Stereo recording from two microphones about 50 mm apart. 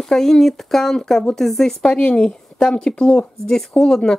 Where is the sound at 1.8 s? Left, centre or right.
Left.